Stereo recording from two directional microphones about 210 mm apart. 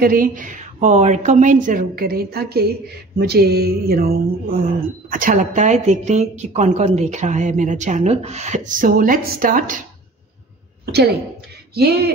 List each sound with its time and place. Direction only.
0.0 s a woman's voice: 40° right (ahead or behind)
10.9 s a woman's voice: 50° right (ahead or behind)